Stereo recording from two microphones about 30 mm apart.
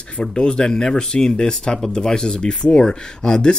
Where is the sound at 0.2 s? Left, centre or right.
Left.